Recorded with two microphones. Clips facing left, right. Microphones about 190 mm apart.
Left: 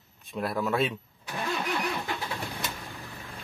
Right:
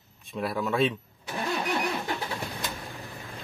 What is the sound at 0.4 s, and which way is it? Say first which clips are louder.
Speech: right 1 dB; centre (ahead or behind).